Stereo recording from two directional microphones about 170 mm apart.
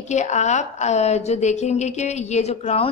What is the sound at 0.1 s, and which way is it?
A woman's voice, 45° left (ahead or behind).